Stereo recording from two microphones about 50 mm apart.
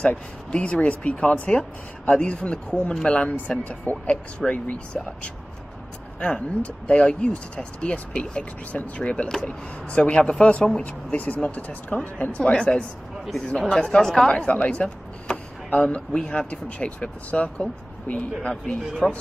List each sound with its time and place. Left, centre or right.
0.0 s speech: left
3.3 s speech: left
4.4 s speech: centre
4.9 s speech: left
6.1 s speech: left
12.5 s speech: centre
14.3 s speech: left
18.5 s speech: centre